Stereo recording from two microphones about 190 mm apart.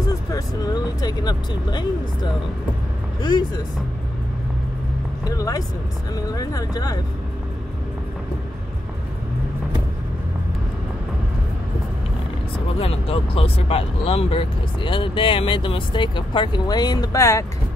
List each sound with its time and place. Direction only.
0.3 s vehicle: 20° left (ahead or behind)
3.2 s speech: 25° left (ahead or behind)
5.2 s speech: 20° left (ahead or behind)
12.7 s speech: 30° left (ahead or behind)